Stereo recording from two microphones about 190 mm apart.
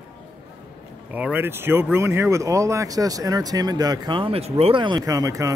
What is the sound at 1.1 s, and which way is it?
Speech, 10° right (ahead or behind).